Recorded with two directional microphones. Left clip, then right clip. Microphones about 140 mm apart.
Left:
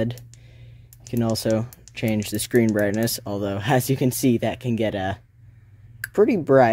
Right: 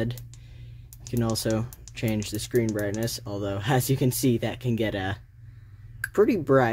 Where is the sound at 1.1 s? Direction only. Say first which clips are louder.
Left 5 dB; 35° left (ahead or behind).